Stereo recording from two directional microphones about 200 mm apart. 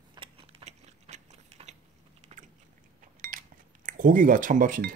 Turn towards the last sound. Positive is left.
turn(degrees=-45)  # may be behind; listen again after turning